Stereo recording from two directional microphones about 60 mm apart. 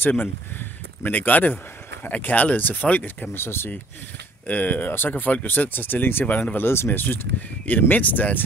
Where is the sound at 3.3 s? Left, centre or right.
Left.